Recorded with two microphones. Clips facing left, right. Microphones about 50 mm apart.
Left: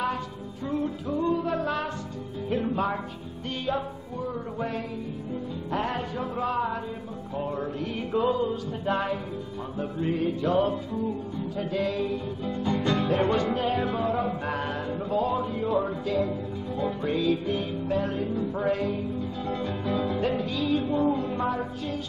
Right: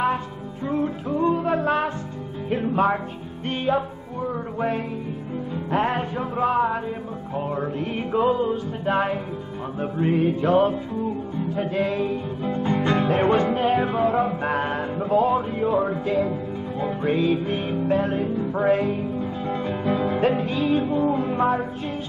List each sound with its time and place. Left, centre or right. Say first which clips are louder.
0.7 s music: right 4 dB; right
3.4 s music: right 6 dB; right
14.4 s a sound: right 6 dB; right
15.0 s speech: right 7 dB; right
20.8 s music: right 3 dB; right
21.1 s music: right 6 dB; right